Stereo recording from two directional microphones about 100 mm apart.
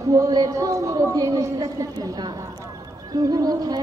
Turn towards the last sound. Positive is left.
turn(degrees=-40)  # may be behind; listen again after turning